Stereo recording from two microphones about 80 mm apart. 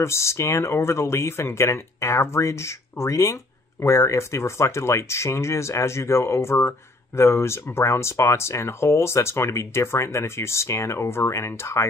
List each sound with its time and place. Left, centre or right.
0.0 s speech: left